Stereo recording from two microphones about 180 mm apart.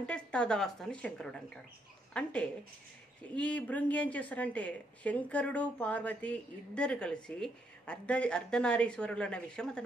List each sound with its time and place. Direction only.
0.0 s a woman's voice: 5° left (ahead or behind)